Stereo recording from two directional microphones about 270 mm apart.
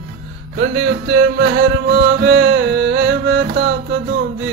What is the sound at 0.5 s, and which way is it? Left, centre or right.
Music, right.